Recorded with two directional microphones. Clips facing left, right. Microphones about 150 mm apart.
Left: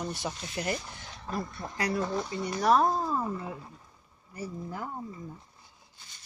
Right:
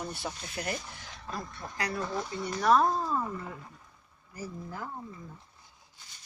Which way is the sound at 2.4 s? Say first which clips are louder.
Even; 15° left (ahead or behind).